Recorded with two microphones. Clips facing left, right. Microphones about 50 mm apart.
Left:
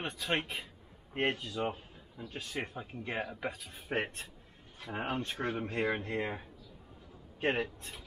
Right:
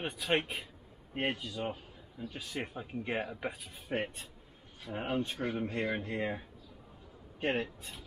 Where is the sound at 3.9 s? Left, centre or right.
Left.